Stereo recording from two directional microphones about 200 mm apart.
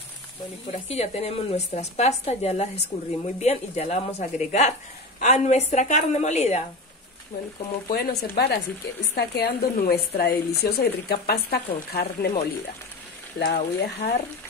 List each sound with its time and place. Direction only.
0.7 s a woman's voice: 30° left (ahead or behind)
7.9 s speech: 50° left (ahead or behind)